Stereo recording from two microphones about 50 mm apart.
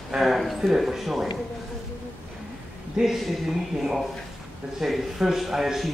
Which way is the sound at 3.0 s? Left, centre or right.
Centre.